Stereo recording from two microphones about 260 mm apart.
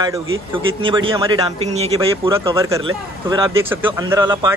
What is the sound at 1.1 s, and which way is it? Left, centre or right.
Speech, centre.